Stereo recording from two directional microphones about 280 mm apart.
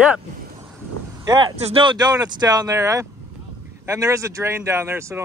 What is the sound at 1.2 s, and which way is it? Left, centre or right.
Speech, centre.